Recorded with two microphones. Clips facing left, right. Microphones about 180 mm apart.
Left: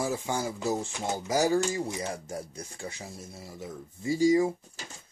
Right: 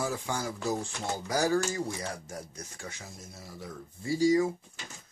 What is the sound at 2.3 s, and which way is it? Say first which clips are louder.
Speech: left 4 dB; 30° left (ahead or behind).